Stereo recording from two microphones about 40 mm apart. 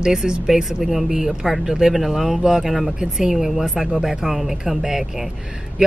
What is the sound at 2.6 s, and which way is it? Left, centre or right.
Speech, centre.